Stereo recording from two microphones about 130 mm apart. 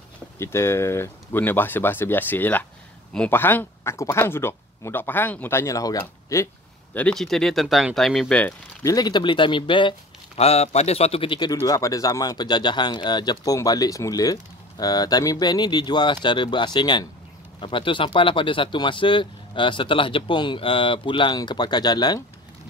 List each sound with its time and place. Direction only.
0.4 s speech: 20° left (ahead or behind)
7.0 s speech: 5° left (ahead or behind)
8.8 s speech: 30° left (ahead or behind)
10.3 s speech: 50° left (ahead or behind)
11.5 s speech: 25° left (ahead or behind)